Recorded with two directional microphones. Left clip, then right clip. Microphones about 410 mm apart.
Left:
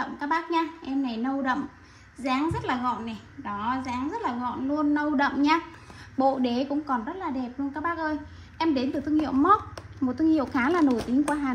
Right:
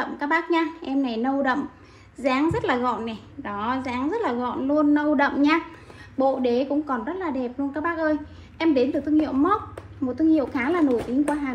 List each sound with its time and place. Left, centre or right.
0.0 s a woman's voice: centre